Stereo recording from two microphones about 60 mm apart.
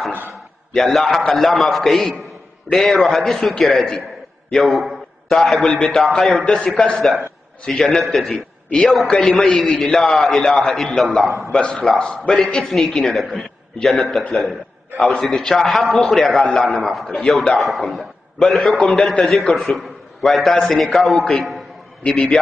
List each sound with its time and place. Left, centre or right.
0.3 s a sound: centre
1.3 s a man's voice: centre
9.9 s a man's voice: centre
11.2 s a man's voice: right
11.5 s a man's voice: centre
13.4 s chuckle: centre
15.0 s a man's voice: centre
22.0 s a man's voice: centre